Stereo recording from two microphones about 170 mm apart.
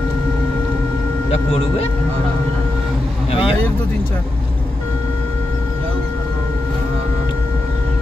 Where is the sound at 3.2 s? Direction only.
30° left (ahead or behind).